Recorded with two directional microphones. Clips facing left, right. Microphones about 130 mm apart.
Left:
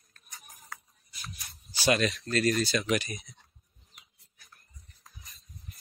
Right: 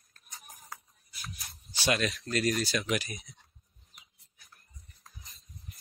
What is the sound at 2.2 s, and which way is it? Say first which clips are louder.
Speech: left 2 dB; 10° right (ahead or behind).